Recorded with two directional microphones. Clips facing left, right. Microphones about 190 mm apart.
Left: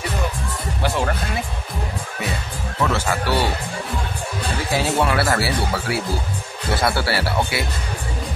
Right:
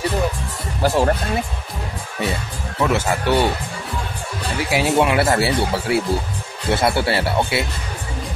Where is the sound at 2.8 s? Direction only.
15° right (ahead or behind).